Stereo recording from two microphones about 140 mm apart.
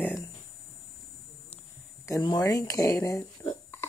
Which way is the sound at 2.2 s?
30° left (ahead or behind).